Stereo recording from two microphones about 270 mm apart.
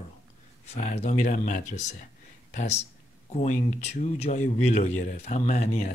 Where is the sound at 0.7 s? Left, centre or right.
Left.